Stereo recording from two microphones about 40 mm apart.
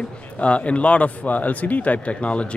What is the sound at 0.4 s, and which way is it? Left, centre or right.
Speech, left.